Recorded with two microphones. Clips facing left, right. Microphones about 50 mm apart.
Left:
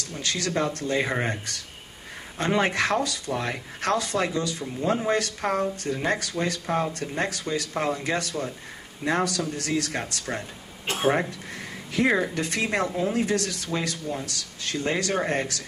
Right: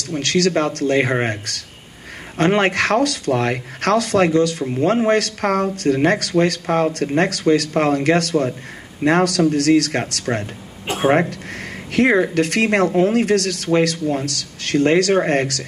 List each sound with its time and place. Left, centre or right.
0.2 s speech: right
10.3 s speech: right
11.2 s a sound: right
12.4 s speech: right
14.2 s speech: right